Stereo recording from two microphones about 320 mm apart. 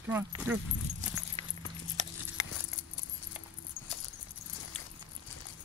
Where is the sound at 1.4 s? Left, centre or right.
Centre.